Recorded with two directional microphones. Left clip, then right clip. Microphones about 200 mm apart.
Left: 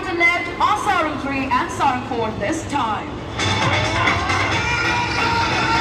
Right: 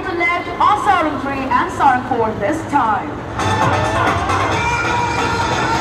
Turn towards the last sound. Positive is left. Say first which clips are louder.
# right 1 dB
turn(degrees=-45)  # may be behind; listen again after turning